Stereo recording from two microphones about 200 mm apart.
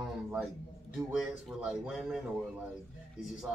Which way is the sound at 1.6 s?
Centre (ahead or behind).